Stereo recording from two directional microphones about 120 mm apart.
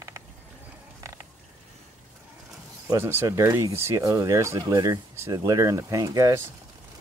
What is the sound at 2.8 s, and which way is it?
Speech, 20° right (ahead or behind).